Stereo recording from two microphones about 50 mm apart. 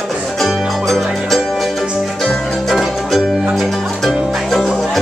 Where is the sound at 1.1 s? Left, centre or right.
Centre.